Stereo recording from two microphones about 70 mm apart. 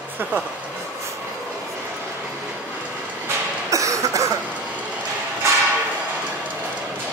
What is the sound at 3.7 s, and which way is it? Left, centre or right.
Cough, right.